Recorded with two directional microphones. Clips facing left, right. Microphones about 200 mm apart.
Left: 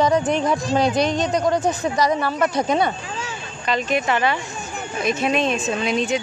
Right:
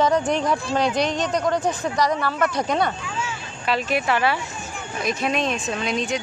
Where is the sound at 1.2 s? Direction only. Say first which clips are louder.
Left 2 dB; 20° left (ahead or behind).